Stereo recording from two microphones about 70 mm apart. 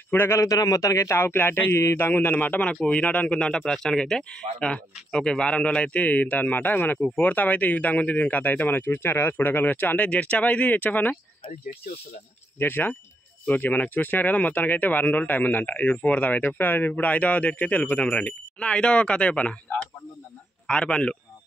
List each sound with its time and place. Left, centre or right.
0.1 s speech: left
0.4 s speech: left
12.5 s speech: left; by 21.2 s centre